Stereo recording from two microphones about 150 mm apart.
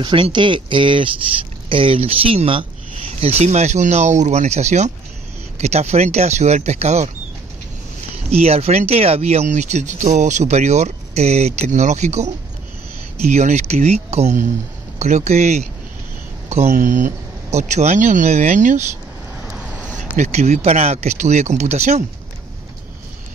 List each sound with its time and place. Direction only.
0.0 s speech: 35° right (ahead or behind)
8.3 s speech: 45° right (ahead or behind)
20.2 s speech: 50° right (ahead or behind)